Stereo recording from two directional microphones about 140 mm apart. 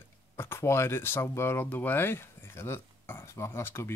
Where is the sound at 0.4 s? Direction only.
20° left (ahead or behind).